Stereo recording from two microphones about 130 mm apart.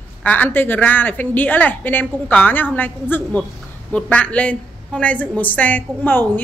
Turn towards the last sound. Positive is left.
turn(degrees=15)  # may be behind; listen again after turning